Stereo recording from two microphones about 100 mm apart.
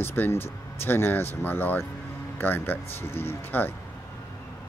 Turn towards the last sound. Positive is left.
turn(degrees=20)  # may be behind; listen again after turning